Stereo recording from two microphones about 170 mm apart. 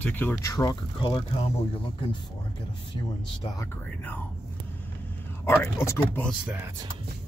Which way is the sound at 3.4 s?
20° left (ahead or behind).